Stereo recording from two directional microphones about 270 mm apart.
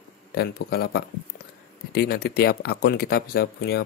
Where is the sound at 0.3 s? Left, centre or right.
Left.